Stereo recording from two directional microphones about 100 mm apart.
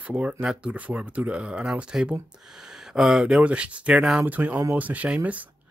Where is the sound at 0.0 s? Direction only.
15° right (ahead or behind).